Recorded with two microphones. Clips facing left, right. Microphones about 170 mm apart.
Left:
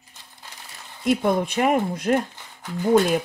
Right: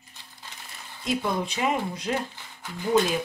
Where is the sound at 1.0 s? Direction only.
55° left (ahead or behind).